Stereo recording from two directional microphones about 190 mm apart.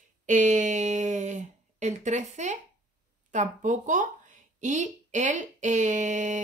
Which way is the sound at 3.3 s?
40° right (ahead or behind).